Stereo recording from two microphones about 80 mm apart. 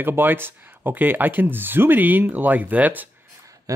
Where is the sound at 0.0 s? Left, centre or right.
Right.